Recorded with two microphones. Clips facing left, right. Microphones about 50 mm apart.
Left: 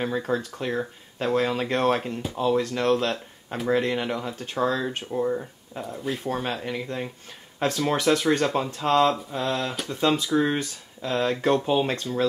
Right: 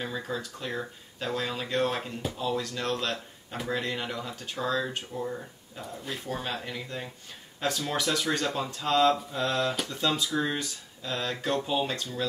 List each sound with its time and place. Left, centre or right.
0.0 s speech: left
9.4 s speech: centre
9.8 s speech: left